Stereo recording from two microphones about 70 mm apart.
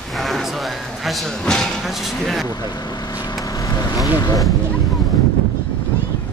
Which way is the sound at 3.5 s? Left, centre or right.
Left.